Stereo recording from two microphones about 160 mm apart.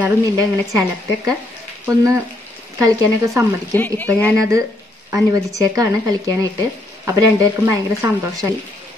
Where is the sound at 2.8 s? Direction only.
20° right (ahead or behind).